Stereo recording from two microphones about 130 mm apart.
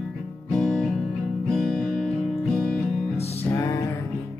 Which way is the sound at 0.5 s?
5° left (ahead or behind).